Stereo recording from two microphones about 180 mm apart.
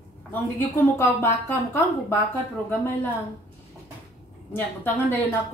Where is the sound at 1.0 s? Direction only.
15° left (ahead or behind).